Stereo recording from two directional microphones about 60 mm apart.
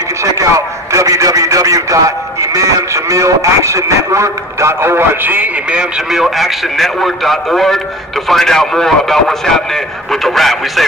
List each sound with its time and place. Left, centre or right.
0.2 s a man's voice: right
6.1 s a man's voice: centre
10.2 s a man's voice: centre